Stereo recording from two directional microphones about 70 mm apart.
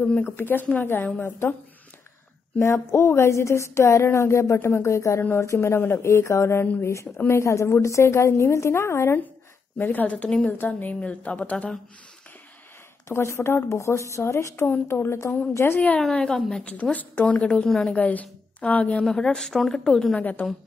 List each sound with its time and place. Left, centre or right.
0.4 s a woman's voice: left
2.6 s a woman's voice: left
9.8 s a woman's voice: left
13.1 s a woman's voice: left
16.0 s a woman's voice: centre
16.9 s a woman's voice: left
17.6 s a woman's voice: centre
17.9 s a woman's voice: left
19.1 s a woman's voice: centre
20.2 s a woman's voice: left